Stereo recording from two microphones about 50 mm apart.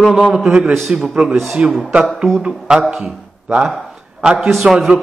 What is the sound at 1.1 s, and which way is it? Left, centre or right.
A man's voice, right.